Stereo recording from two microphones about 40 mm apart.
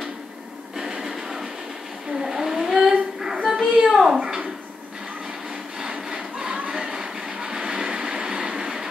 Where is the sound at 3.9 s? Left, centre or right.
Centre.